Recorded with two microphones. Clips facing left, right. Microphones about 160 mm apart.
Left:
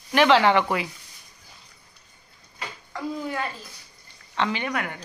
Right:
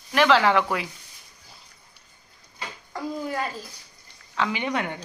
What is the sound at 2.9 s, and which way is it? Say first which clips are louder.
Speech: even; 40° right (ahead or behind).